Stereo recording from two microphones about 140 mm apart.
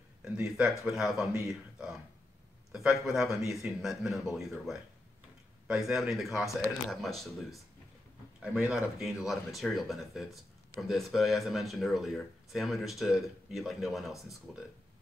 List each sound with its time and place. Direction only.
0.5 s speech: 5° right (ahead or behind)
3.1 s speech: centre (ahead or behind)
5.9 s speech: centre (ahead or behind)